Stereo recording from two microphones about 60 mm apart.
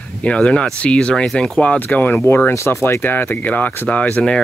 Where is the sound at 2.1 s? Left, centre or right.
Left.